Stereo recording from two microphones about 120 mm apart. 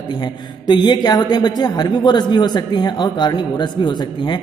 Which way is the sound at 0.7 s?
40° left (ahead or behind).